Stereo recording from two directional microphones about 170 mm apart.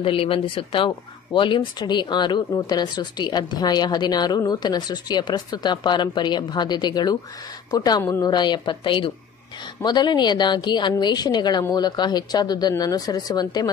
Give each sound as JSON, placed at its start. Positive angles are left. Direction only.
{"t": 0.0, "sound": "speech", "side_deg": 35}